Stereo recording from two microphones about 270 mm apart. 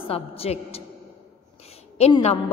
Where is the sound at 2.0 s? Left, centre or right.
Left.